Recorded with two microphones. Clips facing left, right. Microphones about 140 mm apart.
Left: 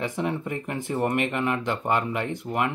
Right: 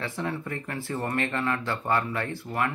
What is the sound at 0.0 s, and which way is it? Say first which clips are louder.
Speech: left 4 dB; 20° left (ahead or behind).